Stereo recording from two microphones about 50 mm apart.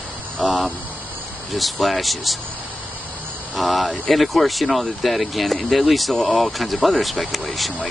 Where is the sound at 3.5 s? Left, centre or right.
Centre.